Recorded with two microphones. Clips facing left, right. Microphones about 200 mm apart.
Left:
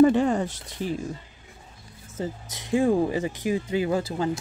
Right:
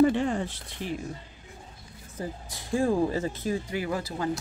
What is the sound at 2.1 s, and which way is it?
Speech, 20° left (ahead or behind).